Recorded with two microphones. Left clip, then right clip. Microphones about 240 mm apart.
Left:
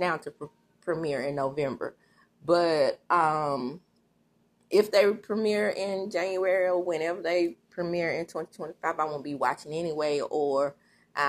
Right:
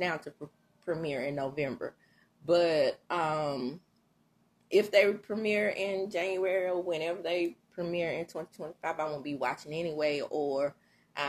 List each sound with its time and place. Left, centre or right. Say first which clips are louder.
0.8 s speech: left 4 dB; centre